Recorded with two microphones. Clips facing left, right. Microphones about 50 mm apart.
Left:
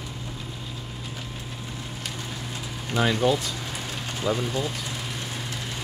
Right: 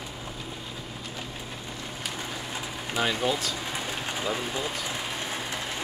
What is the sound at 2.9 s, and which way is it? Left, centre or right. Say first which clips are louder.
Speech: left 4 dB; centre.